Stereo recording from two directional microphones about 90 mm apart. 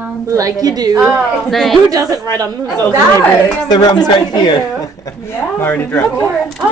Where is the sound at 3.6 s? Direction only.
50° left (ahead or behind).